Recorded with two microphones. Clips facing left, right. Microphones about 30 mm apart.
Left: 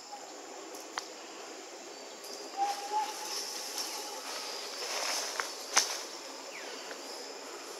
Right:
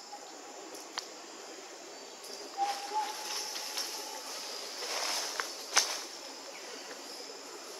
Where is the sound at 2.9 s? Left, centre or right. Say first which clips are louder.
Left 1 dB; centre.